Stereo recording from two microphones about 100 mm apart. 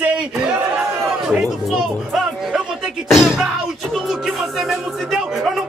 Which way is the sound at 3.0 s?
5° right (ahead or behind).